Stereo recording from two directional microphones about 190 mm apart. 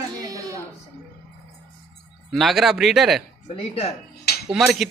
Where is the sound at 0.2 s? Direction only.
20° right (ahead or behind).